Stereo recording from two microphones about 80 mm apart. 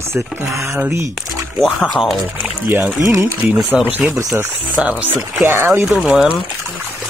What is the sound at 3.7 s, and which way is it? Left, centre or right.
Speech, centre.